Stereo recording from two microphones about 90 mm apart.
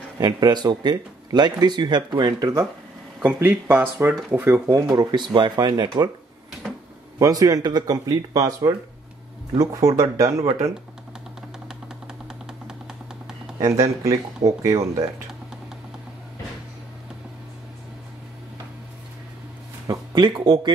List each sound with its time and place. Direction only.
0.2 s speech: 50° right (ahead or behind)
3.2 s speech: 25° right (ahead or behind)
4.9 s speech: 55° right (ahead or behind)
7.2 s speech: 40° right (ahead or behind)
11.6 s a sound: 5° right (ahead or behind)
13.6 s speech: 40° right (ahead or behind)
19.9 s speech: 55° right (ahead or behind)